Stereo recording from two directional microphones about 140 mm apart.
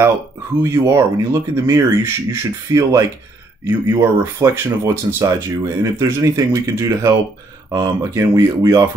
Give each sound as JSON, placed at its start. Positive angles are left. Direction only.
{"t": 0.6, "sound": "speech", "side_deg": -20}